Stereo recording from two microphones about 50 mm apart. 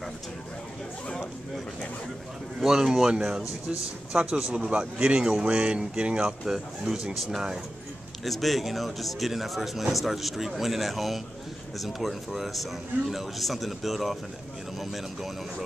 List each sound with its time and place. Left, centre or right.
2.6 s speech: centre
8.2 s speech: centre